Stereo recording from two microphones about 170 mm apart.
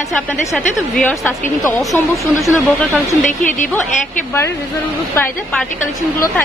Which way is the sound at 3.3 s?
50° left (ahead or behind).